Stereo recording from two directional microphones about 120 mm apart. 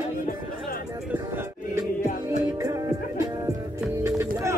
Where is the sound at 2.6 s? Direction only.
30° right (ahead or behind).